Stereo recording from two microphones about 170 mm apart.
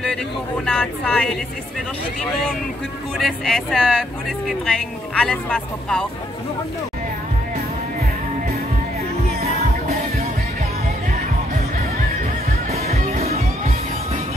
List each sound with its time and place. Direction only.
0.7 s speech: 5° left (ahead or behind)
3.2 s speech: centre (ahead or behind)
12.7 s music: 40° right (ahead or behind)